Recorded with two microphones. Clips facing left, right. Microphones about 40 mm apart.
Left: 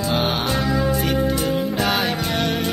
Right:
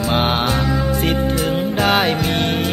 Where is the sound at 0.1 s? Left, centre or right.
Right.